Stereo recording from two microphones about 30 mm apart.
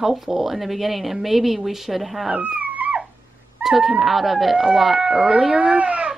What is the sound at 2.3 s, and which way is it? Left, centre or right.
Dog, right.